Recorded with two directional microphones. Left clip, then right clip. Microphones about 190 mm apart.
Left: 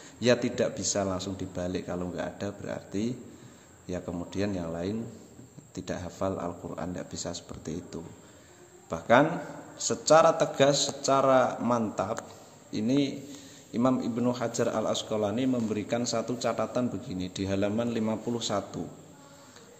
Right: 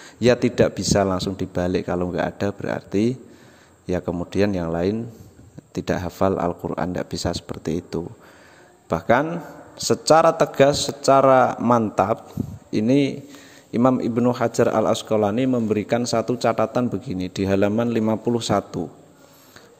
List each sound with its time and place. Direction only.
0.0 s a man's voice: 45° right (ahead or behind)